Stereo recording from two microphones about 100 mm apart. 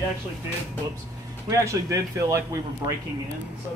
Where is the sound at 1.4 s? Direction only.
30° right (ahead or behind).